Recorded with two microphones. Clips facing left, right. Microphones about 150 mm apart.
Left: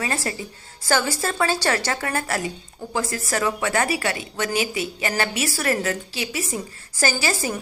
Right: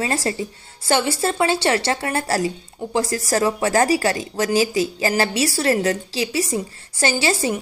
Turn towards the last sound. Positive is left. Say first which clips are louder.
# right 4 dB
turn(degrees=-30)  # may be behind; listen again after turning